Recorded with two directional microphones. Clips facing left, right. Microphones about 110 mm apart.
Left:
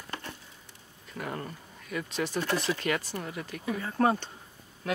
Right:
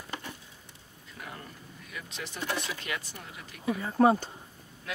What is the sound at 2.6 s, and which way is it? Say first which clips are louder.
Speech: left 7 dB; 45° left (ahead or behind).